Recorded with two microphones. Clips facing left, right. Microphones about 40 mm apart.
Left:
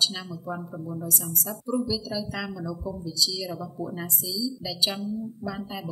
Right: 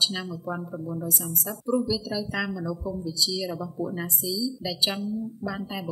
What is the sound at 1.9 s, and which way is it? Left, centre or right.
A woman's voice, centre.